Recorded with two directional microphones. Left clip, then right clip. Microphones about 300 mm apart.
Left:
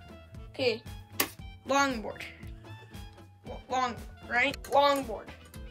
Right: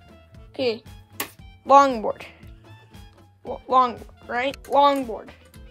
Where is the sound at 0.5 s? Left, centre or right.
Right.